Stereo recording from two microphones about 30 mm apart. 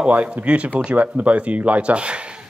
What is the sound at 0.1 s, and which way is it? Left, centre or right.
Speech, right.